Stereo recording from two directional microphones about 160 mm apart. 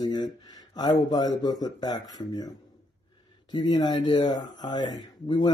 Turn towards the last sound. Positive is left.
turn(degrees=25)  # may be behind; listen again after turning